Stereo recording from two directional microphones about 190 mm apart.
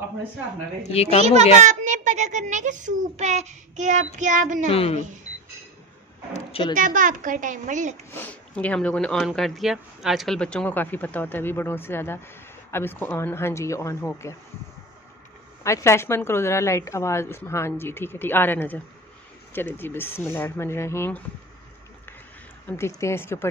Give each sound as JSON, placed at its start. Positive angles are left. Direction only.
{"t": 0.9, "sound": "a woman's voice", "side_deg": 35}
{"t": 1.2, "sound": "a child's voice", "side_deg": -35}
{"t": 4.6, "sound": "a woman's voice", "side_deg": 30}
{"t": 6.3, "sound": "a sound", "side_deg": 30}
{"t": 6.7, "sound": "a child's voice", "side_deg": -45}
{"t": 8.1, "sound": "speech", "side_deg": 10}
{"t": 15.6, "sound": "speech", "side_deg": 15}
{"t": 22.7, "sound": "speech", "side_deg": 15}